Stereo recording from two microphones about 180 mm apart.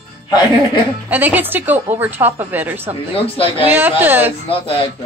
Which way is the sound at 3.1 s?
30° left (ahead or behind).